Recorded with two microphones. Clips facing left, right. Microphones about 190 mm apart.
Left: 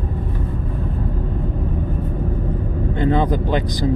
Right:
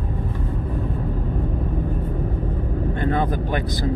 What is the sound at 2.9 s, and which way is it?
Vehicle, 20° left (ahead or behind).